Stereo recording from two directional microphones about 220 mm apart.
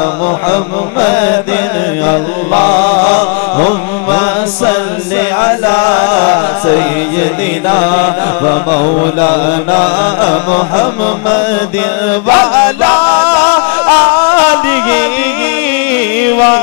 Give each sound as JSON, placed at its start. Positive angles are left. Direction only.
{"t": 0.5, "sound": "mantra", "side_deg": 20}
{"t": 3.5, "sound": "mantra", "side_deg": 35}
{"t": 5.4, "sound": "music", "side_deg": 20}
{"t": 8.7, "sound": "mantra", "side_deg": 35}
{"t": 9.3, "sound": "mantra", "side_deg": 20}
{"t": 12.3, "sound": "music", "side_deg": 20}
{"t": 16.2, "sound": "music", "side_deg": 15}